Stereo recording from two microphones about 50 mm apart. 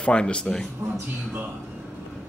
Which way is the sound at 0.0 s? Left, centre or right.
Left.